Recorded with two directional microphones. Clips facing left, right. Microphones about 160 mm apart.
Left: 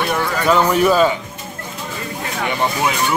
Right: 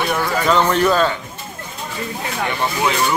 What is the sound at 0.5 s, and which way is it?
Speech, 5° left (ahead or behind).